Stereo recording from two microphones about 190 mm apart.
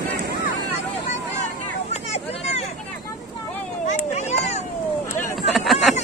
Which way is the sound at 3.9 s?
35° left (ahead or behind).